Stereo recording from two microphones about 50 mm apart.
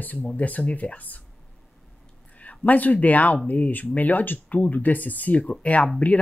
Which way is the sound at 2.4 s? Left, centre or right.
Left.